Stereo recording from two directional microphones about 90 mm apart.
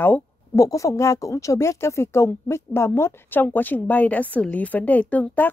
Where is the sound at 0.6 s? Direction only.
35° left (ahead or behind).